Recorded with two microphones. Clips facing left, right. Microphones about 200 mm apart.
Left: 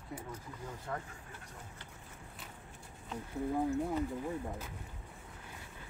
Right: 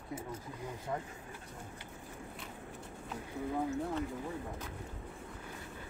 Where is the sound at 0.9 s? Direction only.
15° right (ahead or behind).